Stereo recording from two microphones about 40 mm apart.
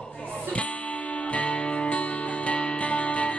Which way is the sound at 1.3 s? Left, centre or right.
Left.